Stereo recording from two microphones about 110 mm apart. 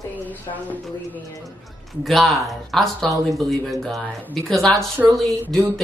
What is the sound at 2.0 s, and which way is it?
Speech, centre (ahead or behind).